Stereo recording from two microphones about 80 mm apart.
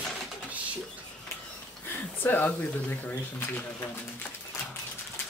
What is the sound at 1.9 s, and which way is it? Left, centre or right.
Speech, left.